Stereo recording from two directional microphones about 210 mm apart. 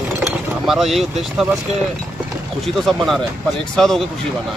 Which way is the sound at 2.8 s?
Centre (ahead or behind).